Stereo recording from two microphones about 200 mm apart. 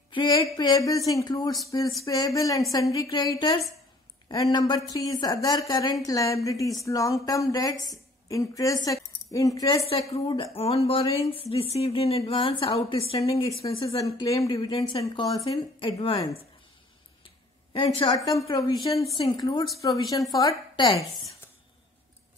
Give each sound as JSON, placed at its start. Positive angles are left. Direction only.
{"t": 0.1, "sound": "a woman's voice", "side_deg": 25}
{"t": 13.9, "sound": "a woman's voice", "side_deg": 15}
{"t": 17.7, "sound": "a woman's voice", "side_deg": 25}